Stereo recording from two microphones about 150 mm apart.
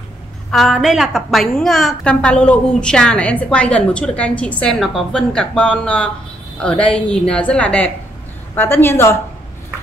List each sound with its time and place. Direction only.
0.5 s a woman's voice: centre (ahead or behind); by 9.2 s 15° left (ahead or behind)